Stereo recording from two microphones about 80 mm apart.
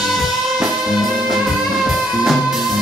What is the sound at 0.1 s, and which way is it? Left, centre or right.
Music, centre.